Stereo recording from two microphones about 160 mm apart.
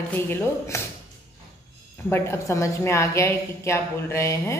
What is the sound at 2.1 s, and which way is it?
A woman's voice, 15° left (ahead or behind).